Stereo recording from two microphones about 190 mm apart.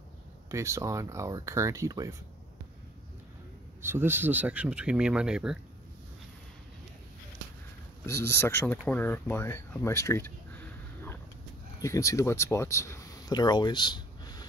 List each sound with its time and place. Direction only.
0.5 s speech: 15° right (ahead or behind)
3.8 s speech: 10° right (ahead or behind)
8.0 s speech: 15° left (ahead or behind)
11.8 s speech: 15° left (ahead or behind)